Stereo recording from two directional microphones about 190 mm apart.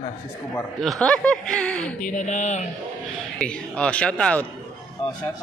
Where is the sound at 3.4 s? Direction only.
5° left (ahead or behind).